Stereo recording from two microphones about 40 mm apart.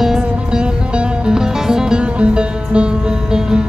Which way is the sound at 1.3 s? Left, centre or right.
Centre.